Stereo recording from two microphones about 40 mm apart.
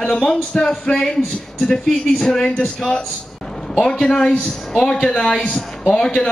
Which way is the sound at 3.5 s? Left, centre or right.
Centre.